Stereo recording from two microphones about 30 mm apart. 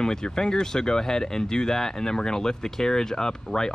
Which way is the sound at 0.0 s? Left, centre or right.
Left.